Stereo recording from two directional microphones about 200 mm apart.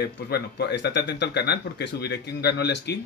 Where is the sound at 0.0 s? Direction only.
55° left (ahead or behind).